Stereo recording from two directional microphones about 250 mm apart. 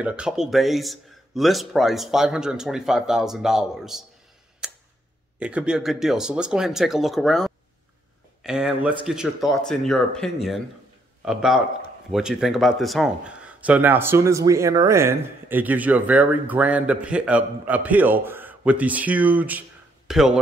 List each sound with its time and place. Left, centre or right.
0.0 s speech: centre
4.6 s tick: centre
5.4 s speech: centre